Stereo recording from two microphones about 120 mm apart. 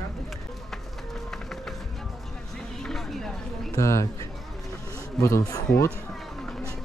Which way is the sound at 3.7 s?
25° left (ahead or behind).